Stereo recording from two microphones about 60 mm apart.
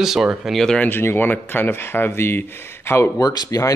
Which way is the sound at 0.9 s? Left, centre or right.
Left.